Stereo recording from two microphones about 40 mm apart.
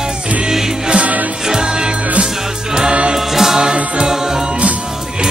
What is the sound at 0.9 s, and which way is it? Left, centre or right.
Music, right.